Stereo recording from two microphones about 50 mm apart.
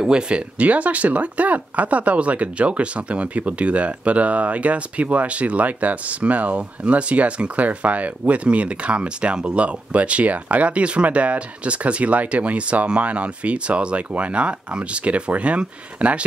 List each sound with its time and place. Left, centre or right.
0.0 s speech: centre